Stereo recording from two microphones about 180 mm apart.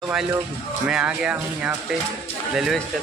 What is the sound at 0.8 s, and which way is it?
Speech, 5° right (ahead or behind).